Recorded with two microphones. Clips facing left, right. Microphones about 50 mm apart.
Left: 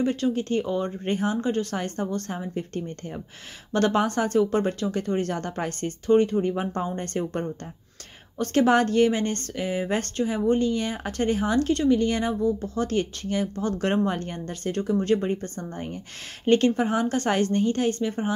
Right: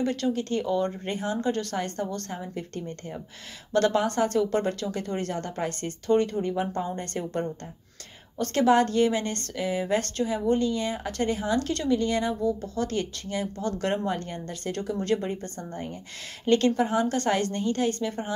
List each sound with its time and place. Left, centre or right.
0.0 s a woman's voice: left